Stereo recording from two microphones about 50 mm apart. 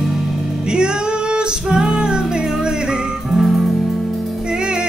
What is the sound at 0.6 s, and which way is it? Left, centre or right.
Music, centre.